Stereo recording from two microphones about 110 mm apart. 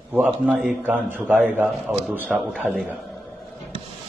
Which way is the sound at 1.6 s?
5° right (ahead or behind).